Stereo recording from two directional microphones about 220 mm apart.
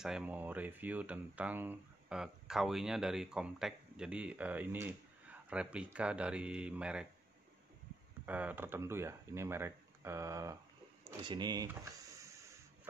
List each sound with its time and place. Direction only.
0.0 s speech: 5° right (ahead or behind)
8.3 s speech: 5° right (ahead or behind)